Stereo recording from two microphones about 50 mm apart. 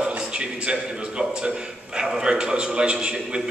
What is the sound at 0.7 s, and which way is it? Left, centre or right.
A man's voice, centre.